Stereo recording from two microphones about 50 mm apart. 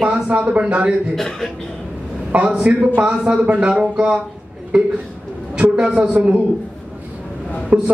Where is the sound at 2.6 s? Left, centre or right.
Right.